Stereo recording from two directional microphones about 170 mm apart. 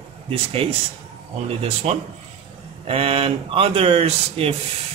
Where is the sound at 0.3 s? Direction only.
35° right (ahead or behind).